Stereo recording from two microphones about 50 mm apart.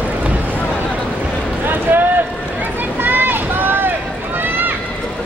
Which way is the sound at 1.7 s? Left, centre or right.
Right.